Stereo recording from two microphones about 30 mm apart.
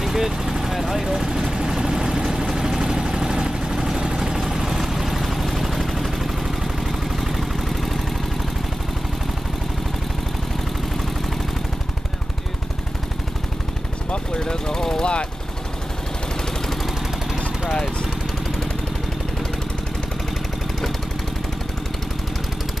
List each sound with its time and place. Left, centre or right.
0.0 s vehicle: centre
14.1 s vehicle: left